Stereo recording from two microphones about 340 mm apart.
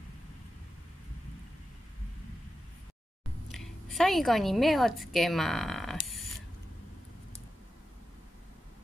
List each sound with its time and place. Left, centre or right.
3.5 s a woman's voice: centre